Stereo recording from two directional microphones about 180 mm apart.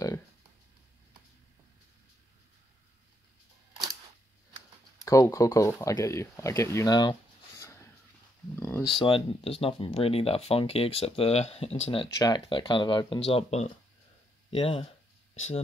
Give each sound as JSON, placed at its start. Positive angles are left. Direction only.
{"t": 5.0, "sound": "speech", "side_deg": 20}
{"t": 8.5, "sound": "a sound", "side_deg": 10}
{"t": 8.8, "sound": "speech", "side_deg": 30}
{"t": 12.1, "sound": "speech", "side_deg": 20}